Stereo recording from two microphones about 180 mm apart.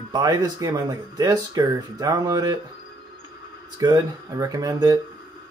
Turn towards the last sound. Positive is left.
turn(degrees=-20)  # may be behind; listen again after turning